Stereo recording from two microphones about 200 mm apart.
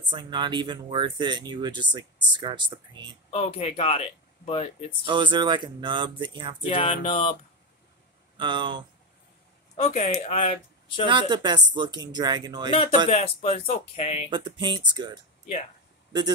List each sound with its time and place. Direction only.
0.0 s speech: 25° right (ahead or behind)
3.3 s speech: 30° left (ahead or behind)
5.0 s speech: 25° right (ahead or behind)
6.6 s a sound: 25° left (ahead or behind)
8.4 s speech: 25° right (ahead or behind)
9.8 s speech: 35° left (ahead or behind)
11.1 s speech: 25° right (ahead or behind)
13.1 s speech: 30° left (ahead or behind)
14.3 s speech: 25° right (ahead or behind)